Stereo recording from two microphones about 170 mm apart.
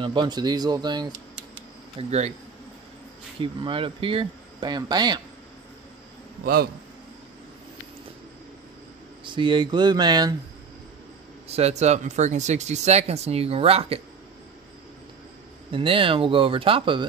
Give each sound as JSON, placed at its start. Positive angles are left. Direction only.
{"t": 0.0, "sound": "speech", "side_deg": -30}
{"t": 2.0, "sound": "speech", "side_deg": -40}
{"t": 3.3, "sound": "speech", "side_deg": -30}
{"t": 6.4, "sound": "a man's voice", "side_deg": -60}
{"t": 9.2, "sound": "speech", "side_deg": -30}
{"t": 11.4, "sound": "speech", "side_deg": -40}
{"t": 15.7, "sound": "speech", "side_deg": -30}